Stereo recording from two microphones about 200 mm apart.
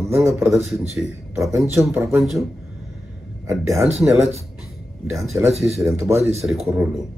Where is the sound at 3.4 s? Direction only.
15° right (ahead or behind).